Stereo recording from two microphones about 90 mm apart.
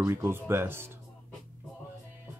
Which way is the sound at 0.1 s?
30° right (ahead or behind).